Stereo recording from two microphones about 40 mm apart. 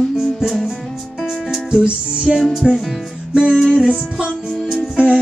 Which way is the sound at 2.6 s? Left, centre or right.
Centre.